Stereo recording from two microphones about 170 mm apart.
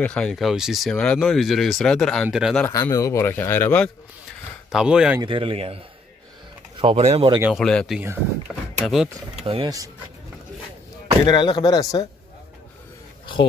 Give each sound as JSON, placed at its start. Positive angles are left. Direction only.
{"t": 0.0, "sound": "speech", "side_deg": 5}
{"t": 2.6, "sound": "speech", "side_deg": 15}
{"t": 4.6, "sound": "speech", "side_deg": -5}
{"t": 5.2, "sound": "speech", "side_deg": -30}
{"t": 6.8, "sound": "speech", "side_deg": -35}
{"t": 7.5, "sound": "speech", "side_deg": 5}
{"t": 9.5, "sound": "speech", "side_deg": -25}
{"t": 11.2, "sound": "speech", "side_deg": 25}